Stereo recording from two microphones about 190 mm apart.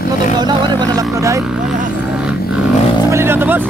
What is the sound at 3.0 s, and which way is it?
Vehicle, 15° right (ahead or behind).